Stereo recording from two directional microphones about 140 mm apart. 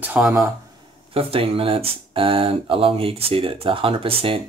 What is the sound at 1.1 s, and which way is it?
Speech, 45° right (ahead or behind).